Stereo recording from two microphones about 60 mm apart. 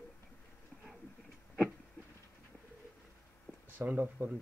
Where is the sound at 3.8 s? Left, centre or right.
Right.